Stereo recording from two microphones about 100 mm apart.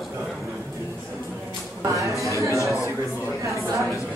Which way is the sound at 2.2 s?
30° right (ahead or behind).